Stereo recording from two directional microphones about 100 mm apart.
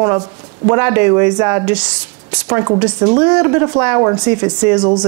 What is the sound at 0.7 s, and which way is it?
A woman's voice, 25° right (ahead or behind).